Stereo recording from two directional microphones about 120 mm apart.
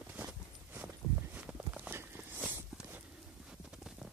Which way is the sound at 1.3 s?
15° right (ahead or behind).